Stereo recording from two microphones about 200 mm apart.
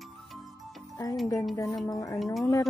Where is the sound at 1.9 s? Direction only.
15° left (ahead or behind).